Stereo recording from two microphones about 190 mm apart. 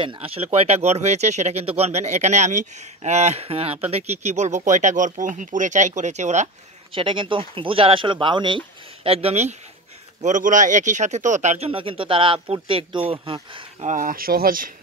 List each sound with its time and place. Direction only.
0.0 s speech: 30° right (ahead or behind)
6.9 s speech: 25° right (ahead or behind)
13.9 s speech: 50° right (ahead or behind)